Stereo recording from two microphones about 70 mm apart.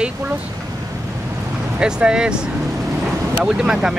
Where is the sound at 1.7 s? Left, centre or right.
Centre.